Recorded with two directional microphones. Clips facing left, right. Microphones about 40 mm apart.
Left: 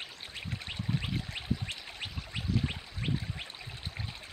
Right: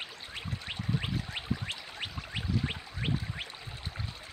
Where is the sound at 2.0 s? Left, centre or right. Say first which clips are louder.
Right 2 dB; centre.